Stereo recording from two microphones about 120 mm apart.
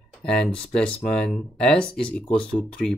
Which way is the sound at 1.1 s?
5° left (ahead or behind).